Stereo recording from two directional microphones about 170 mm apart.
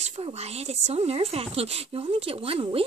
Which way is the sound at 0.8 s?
35° right (ahead or behind).